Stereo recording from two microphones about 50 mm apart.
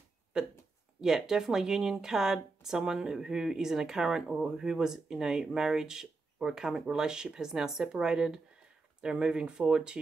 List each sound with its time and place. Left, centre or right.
0.3 s speech: centre